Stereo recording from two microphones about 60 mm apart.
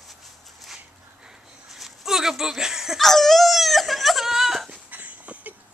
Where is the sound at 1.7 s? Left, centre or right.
Centre.